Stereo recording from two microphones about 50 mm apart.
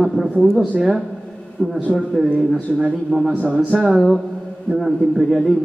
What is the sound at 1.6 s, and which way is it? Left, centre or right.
Speech, centre.